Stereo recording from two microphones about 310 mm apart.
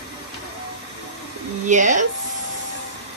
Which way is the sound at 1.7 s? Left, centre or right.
Right.